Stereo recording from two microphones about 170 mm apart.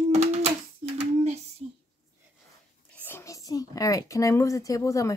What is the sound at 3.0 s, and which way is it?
Speech, 15° left (ahead or behind).